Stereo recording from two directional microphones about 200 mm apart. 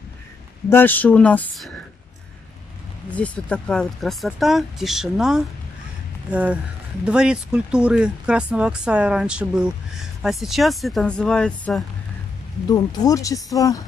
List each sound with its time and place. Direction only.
0.7 s speech: 10° left (ahead or behind)
3.1 s speech: 5° left (ahead or behind)
12.6 s speech: 20° left (ahead or behind)